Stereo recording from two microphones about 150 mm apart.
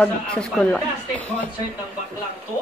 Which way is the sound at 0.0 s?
5° left (ahead or behind).